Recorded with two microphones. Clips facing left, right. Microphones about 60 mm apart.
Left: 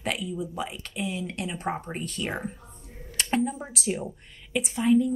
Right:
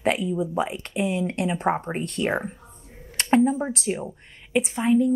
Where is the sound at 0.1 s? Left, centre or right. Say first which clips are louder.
Right 5 dB; right.